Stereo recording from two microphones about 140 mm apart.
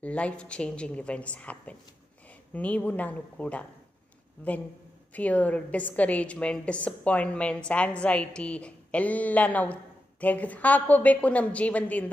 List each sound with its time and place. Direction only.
0.0 s a woman's voice: 10° left (ahead or behind)